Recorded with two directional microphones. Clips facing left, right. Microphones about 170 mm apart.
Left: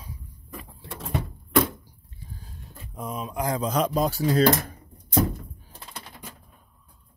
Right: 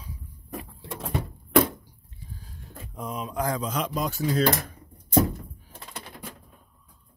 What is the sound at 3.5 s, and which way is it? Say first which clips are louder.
Speech: left 5 dB; 40° left (ahead or behind).